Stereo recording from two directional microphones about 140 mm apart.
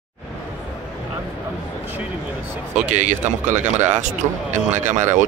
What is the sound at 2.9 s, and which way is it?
Speech, 60° right (ahead or behind).